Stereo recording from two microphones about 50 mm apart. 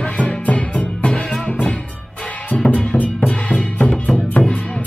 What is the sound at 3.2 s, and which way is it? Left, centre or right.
Music, left.